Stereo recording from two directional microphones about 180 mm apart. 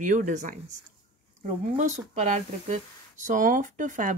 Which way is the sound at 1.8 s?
40° right (ahead or behind).